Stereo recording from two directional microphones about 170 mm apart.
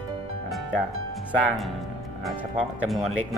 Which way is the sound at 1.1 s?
5° right (ahead or behind).